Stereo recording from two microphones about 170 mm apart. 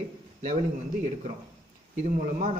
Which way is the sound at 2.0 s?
45° right (ahead or behind).